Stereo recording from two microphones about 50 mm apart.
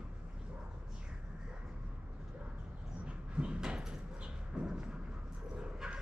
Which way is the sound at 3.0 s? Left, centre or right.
Right.